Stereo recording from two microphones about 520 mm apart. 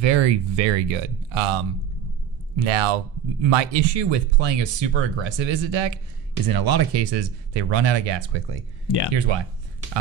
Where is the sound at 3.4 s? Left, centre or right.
Right.